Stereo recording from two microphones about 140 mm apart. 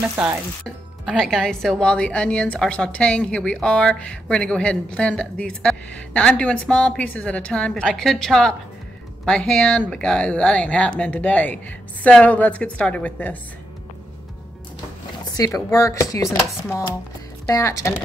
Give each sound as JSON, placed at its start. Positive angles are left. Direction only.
{"t": 0.0, "sound": "frying", "side_deg": -10}
{"t": 1.0, "sound": "a woman's voice", "side_deg": 0}
{"t": 15.3, "sound": "speech", "side_deg": 25}
{"t": 17.5, "sound": "speech", "side_deg": 20}